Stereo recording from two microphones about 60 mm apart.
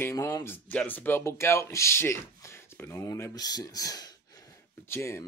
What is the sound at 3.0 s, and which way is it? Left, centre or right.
Speech, left.